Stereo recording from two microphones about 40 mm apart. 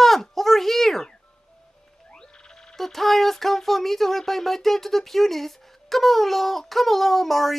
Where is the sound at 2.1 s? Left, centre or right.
Centre.